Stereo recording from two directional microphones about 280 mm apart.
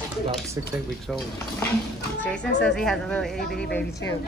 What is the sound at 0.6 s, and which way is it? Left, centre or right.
Speech, centre.